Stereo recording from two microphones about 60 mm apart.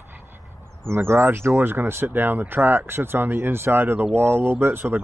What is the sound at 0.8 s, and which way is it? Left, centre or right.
Speech, right.